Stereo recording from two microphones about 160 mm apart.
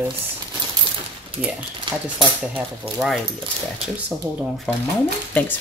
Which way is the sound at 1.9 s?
30° right (ahead or behind).